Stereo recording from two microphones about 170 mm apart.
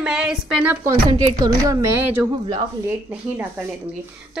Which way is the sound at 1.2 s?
20° right (ahead or behind).